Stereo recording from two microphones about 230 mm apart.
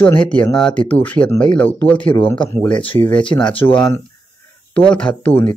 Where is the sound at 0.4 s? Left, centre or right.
Centre.